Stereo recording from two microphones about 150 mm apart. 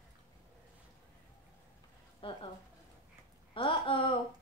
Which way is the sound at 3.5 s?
35° left (ahead or behind).